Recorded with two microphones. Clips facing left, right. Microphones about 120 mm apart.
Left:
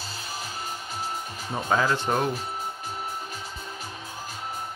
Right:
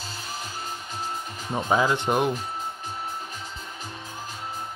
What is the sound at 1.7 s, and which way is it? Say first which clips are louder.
Speech: right 1 dB; 15° right (ahead or behind).